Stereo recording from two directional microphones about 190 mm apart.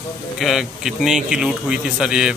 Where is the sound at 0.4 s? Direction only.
Centre (ahead or behind).